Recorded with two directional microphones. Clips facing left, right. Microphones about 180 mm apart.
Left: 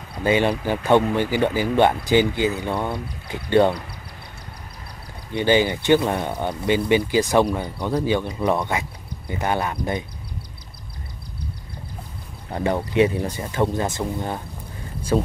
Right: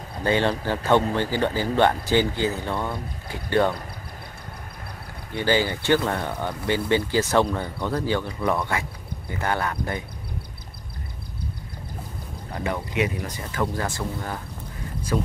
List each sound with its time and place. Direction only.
0.2 s speech: 15° left (ahead or behind)
5.3 s speech: 20° left (ahead or behind)
12.5 s speech: 30° left (ahead or behind)